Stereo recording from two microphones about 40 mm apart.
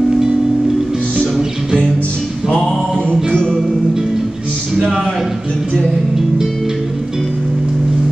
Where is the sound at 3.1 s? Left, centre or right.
Left.